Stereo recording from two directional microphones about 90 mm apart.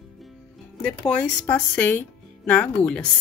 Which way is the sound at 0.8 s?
10° left (ahead or behind).